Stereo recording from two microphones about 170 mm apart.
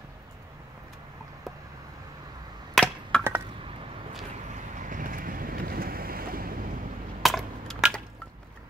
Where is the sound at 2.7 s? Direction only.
5° left (ahead or behind).